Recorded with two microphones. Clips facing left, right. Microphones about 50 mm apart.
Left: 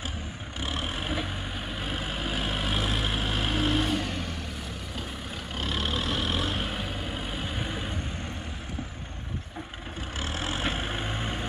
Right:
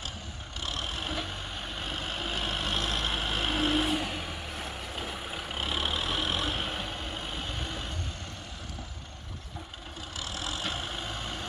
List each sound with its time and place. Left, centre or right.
0.6 s vehicle: centre
10.1 s vehicle: left